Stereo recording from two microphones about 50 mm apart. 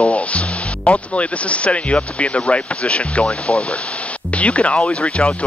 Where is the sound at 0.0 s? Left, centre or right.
Left.